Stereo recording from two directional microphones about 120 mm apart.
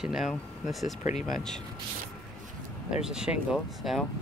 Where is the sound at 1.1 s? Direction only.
80° left.